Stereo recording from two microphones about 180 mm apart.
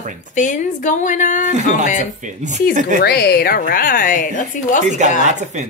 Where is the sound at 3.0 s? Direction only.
60° left (ahead or behind); by 4.8 s 45° left (ahead or behind).